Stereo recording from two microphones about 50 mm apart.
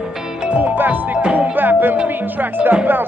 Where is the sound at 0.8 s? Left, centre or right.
Right.